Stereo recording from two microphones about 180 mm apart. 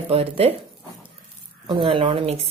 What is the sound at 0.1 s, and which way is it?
Speech, 35° right (ahead or behind).